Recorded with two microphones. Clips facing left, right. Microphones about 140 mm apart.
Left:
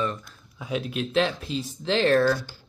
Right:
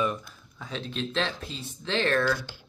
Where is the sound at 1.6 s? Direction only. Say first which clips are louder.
Left 5 dB; 35° left (ahead or behind).